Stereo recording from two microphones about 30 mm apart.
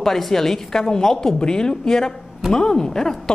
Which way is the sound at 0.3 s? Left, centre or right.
Centre.